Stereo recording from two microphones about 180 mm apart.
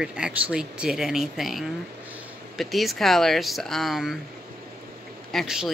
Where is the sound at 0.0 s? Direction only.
5° right (ahead or behind).